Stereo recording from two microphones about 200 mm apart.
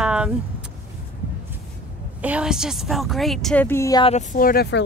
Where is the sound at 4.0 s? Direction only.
35° left (ahead or behind); by 4.8 s 55° left (ahead or behind).